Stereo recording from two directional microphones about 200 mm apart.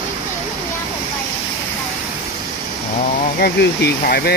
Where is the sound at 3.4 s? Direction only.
50° left (ahead or behind).